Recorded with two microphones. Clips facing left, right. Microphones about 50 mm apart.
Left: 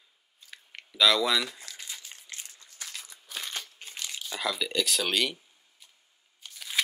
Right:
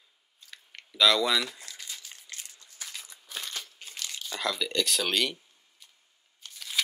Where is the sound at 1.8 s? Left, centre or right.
Left.